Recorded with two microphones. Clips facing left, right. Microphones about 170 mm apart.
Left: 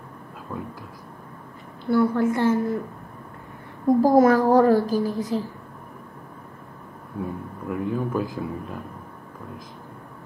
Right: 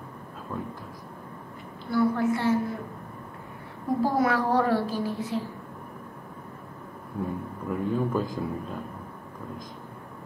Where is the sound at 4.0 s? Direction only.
40° left (ahead or behind).